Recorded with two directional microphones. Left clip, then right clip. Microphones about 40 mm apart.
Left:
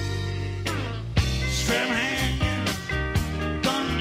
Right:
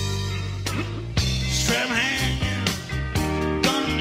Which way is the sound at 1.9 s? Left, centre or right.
Right.